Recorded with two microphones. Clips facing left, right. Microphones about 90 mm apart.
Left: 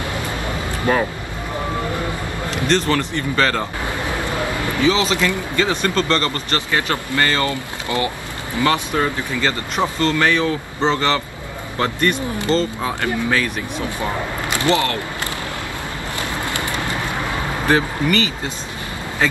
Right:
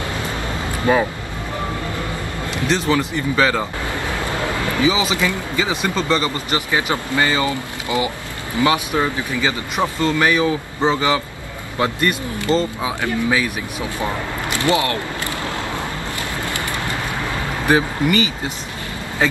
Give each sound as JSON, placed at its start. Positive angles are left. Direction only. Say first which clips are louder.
{"t": 2.5, "sound": "speech", "louder": "even", "side_deg": -5}
{"t": 4.8, "sound": "speech", "louder": "left 2 dB", "side_deg": -10}
{"t": 16.4, "sound": "a sound", "louder": "left 1 dB", "side_deg": 20}
{"t": 17.6, "sound": "speech", "louder": "right 1 dB", "side_deg": -15}